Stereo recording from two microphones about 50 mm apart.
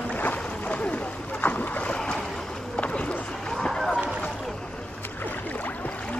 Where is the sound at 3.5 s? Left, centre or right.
Centre.